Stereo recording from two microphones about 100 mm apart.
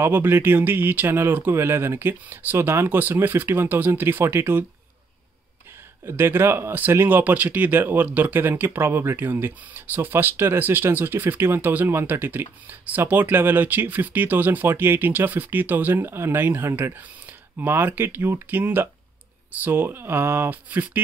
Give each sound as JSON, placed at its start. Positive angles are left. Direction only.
{"t": 0.0, "sound": "speech", "side_deg": -20}
{"t": 6.0, "sound": "speech", "side_deg": -25}